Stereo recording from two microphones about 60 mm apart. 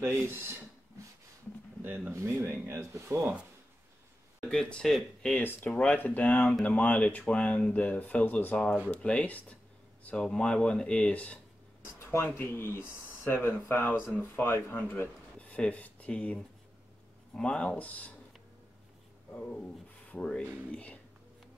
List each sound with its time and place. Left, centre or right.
0.0 s speech: right
2.0 s speech: right
4.5 s speech: centre
5.4 s speech: left
5.7 s speech: centre
12.0 s a sound: left
12.4 s speech: left
15.3 s speech: left
19.3 s speech: centre